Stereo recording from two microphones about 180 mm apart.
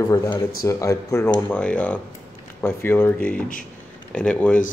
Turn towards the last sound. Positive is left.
turn(degrees=5)  # may be behind; listen again after turning